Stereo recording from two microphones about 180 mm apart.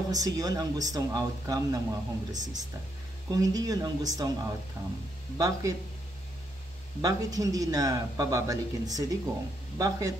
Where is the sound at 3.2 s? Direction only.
20° right (ahead or behind).